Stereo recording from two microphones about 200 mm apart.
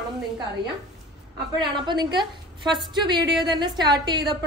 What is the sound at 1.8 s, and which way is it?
A woman's voice, 20° right (ahead or behind).